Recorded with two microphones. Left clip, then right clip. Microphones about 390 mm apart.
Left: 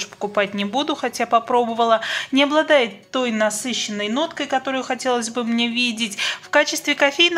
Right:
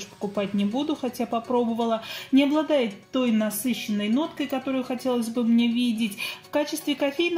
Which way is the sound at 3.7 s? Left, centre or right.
Centre.